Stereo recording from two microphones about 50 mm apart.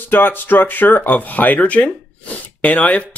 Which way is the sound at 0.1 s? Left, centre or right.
Left.